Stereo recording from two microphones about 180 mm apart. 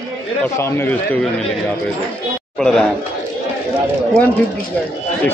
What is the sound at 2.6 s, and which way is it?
Speech, centre (ahead or behind).